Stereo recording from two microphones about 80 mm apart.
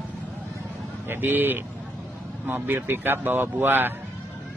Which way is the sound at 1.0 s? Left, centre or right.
Right.